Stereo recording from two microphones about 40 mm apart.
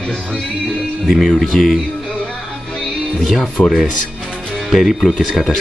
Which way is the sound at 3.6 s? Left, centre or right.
Left.